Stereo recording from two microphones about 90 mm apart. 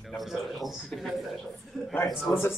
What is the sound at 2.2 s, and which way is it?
Speech, 25° left (ahead or behind).